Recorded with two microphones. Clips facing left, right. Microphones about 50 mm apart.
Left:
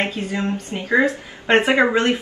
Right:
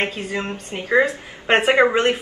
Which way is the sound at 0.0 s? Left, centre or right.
Right.